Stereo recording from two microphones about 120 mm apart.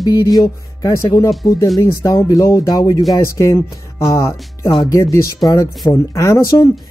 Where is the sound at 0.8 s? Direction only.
25° left (ahead or behind).